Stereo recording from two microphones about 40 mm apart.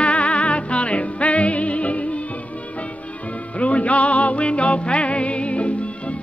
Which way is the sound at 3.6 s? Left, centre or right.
Left.